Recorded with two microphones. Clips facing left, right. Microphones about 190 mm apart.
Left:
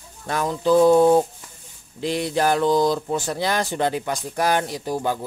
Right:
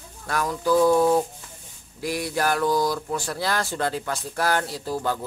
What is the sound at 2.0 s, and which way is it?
Speech, 25° left (ahead or behind).